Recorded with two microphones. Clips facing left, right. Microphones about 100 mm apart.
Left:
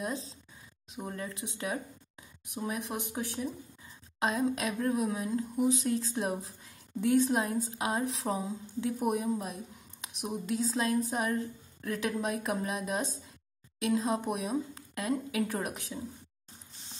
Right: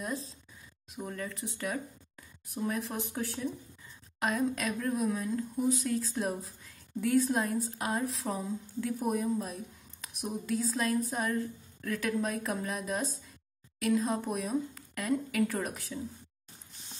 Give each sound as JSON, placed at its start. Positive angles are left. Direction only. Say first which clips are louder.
{"t": 0.0, "sound": "speech", "louder": "left 1 dB", "side_deg": 25}